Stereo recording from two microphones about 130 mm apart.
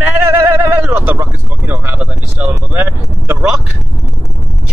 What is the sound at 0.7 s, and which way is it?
Speech, 15° right (ahead or behind).